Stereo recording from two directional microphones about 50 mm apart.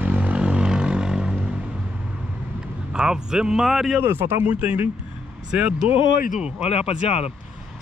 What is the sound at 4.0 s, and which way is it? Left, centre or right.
Speech, right.